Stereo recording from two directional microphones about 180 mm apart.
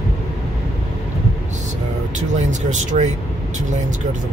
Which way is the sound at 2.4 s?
45° right (ahead or behind).